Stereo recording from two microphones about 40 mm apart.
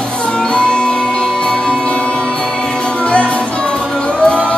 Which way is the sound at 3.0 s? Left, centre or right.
Left.